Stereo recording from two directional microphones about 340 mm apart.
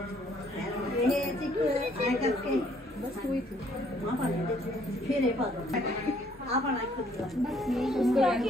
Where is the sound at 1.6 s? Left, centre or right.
Centre.